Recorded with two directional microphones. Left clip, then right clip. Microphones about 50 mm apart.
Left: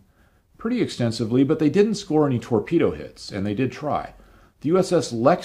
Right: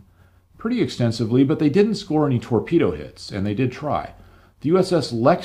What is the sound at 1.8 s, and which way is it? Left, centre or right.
Speech, left.